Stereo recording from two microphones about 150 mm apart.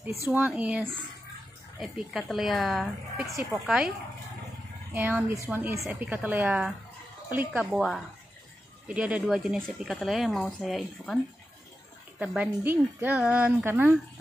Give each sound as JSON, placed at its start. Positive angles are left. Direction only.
{"t": 0.3, "sound": "a woman's voice", "side_deg": -5}
{"t": 4.9, "sound": "a woman's voice", "side_deg": -10}
{"t": 8.8, "sound": "a woman's voice", "side_deg": -5}
{"t": 12.2, "sound": "a woman's voice", "side_deg": -10}